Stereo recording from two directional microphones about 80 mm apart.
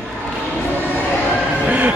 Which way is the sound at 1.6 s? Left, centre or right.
Centre.